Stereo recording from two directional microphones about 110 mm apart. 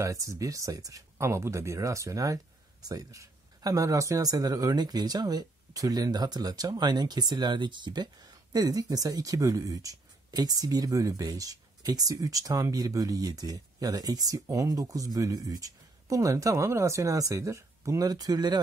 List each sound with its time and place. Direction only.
0.0 s speech: 30° right (ahead or behind)